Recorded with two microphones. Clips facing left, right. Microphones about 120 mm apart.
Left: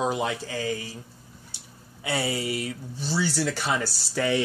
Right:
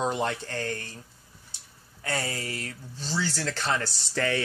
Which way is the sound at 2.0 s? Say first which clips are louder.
Left 4 dB; 10° left (ahead or behind).